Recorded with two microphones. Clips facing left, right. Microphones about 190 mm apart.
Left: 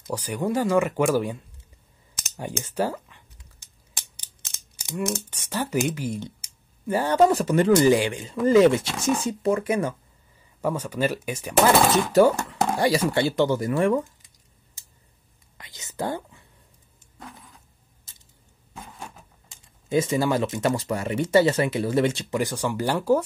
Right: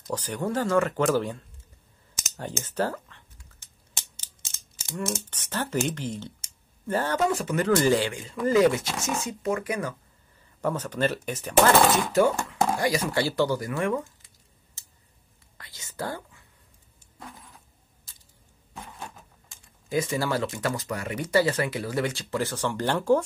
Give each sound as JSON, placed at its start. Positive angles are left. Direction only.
{"t": 0.0, "sound": "speech", "side_deg": 10}
{"t": 2.3, "sound": "scissors", "side_deg": 10}
{"t": 4.7, "sound": "mechanisms", "side_deg": 15}
{"t": 5.3, "sound": "speech", "side_deg": 10}
{"t": 7.2, "sound": "speech", "side_deg": 35}
{"t": 7.6, "sound": "speech", "side_deg": 20}
{"t": 10.6, "sound": "speech", "side_deg": 10}
{"t": 12.1, "sound": "speech", "side_deg": 35}
{"t": 15.5, "sound": "speech", "side_deg": 20}
{"t": 18.8, "sound": "a sound", "side_deg": 0}
{"t": 19.5, "sound": "speech", "side_deg": 20}